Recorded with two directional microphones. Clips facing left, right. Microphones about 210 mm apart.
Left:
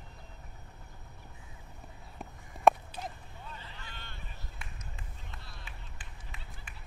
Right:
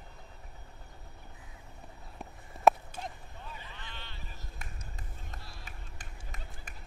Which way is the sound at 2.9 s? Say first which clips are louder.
Even; 50° right (ahead or behind).